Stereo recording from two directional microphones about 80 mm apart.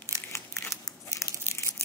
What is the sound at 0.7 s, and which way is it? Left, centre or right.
Crumpling, left.